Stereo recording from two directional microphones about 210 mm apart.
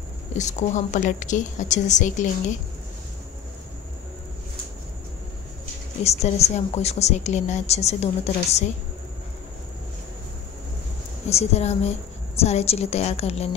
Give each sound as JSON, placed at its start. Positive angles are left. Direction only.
{"t": 0.3, "sound": "a woman's voice", "side_deg": 35}
{"t": 6.0, "sound": "a woman's voice", "side_deg": 30}
{"t": 11.2, "sound": "a woman's voice", "side_deg": 30}